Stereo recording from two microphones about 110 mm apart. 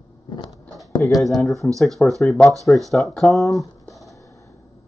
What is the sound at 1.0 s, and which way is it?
Speech, 15° left (ahead or behind).